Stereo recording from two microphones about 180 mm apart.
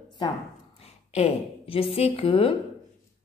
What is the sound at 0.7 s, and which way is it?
A woman's voice, 35° left (ahead or behind).